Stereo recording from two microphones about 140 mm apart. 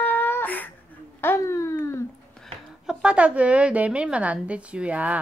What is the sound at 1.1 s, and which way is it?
Speech, 20° left (ahead or behind).